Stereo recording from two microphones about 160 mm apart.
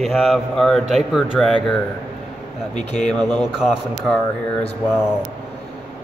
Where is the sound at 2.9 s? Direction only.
5° left (ahead or behind).